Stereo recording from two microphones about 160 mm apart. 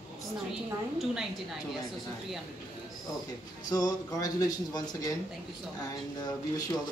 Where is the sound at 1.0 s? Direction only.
Centre (ahead or behind).